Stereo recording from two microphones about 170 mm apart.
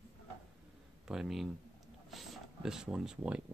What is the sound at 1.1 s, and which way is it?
Speech, centre (ahead or behind).